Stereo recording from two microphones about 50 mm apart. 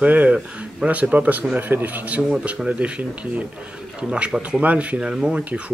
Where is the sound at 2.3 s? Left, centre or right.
Right.